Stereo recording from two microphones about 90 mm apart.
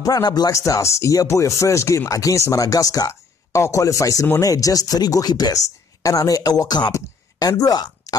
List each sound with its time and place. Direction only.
0.0 s speech: 45° left (ahead or behind)